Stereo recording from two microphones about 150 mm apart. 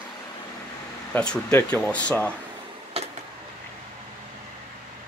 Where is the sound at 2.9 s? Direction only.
40° right (ahead or behind).